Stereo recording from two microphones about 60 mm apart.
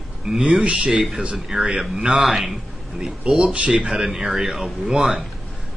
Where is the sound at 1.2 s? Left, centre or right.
Centre.